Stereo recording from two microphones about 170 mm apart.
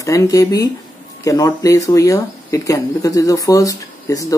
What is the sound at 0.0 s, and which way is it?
Speech, 20° left (ahead or behind).